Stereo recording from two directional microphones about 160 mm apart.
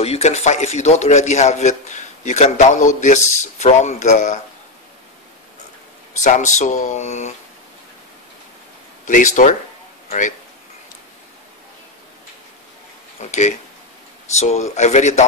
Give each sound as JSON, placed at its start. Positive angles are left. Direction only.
{"t": 0.0, "sound": "a man's voice", "side_deg": 40}
{"t": 6.1, "sound": "a man's voice", "side_deg": 50}
{"t": 9.0, "sound": "a man's voice", "side_deg": 55}
{"t": 13.2, "sound": "a man's voice", "side_deg": 45}